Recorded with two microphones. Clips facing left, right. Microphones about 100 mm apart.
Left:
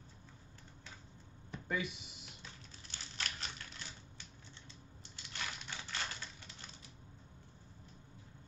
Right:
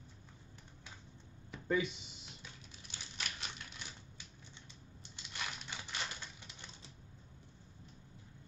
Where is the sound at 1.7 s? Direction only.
25° right (ahead or behind).